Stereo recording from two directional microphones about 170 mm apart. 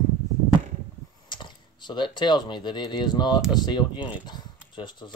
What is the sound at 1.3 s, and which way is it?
Speech, 25° left (ahead or behind).